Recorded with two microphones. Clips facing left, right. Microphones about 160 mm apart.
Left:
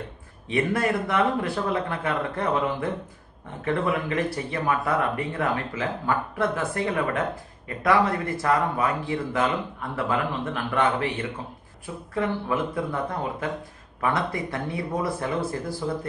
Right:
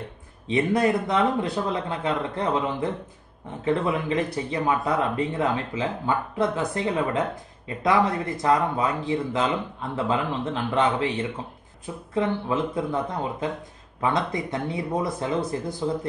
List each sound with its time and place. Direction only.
0.5 s speech: 20° right (ahead or behind)